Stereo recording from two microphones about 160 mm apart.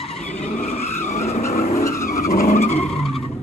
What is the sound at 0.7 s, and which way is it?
Vehicle, 45° left (ahead or behind).